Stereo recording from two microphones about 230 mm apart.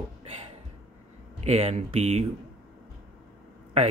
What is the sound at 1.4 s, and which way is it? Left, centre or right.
Speech, right.